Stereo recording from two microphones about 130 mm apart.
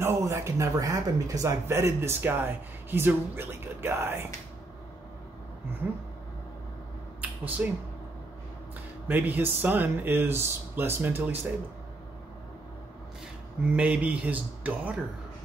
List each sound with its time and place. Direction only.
0.0 s speech: 20° right (ahead or behind)
7.2 s a sound: 15° right (ahead or behind)
9.0 s speech: 15° right (ahead or behind)
13.7 s speech: 10° right (ahead or behind)